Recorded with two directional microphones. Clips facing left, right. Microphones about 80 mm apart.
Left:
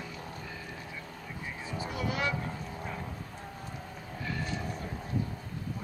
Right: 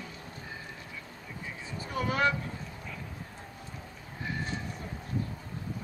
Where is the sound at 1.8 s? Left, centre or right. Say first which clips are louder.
Right 4 dB; right.